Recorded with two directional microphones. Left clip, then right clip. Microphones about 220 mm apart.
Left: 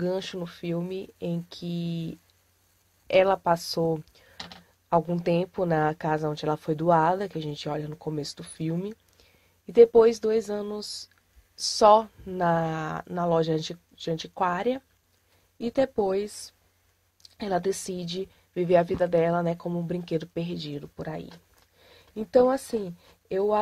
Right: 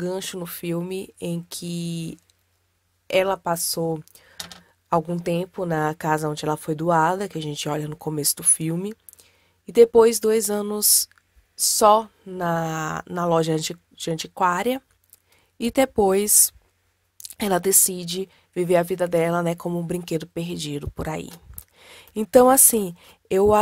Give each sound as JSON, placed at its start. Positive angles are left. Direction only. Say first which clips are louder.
{"t": 0.0, "sound": "a woman's voice", "louder": "right 1 dB", "side_deg": -20}
{"t": 11.5, "sound": "a woman's voice", "louder": "right 2 dB", "side_deg": -20}
{"t": 17.4, "sound": "a woman's voice", "louder": "right 6 dB", "side_deg": -30}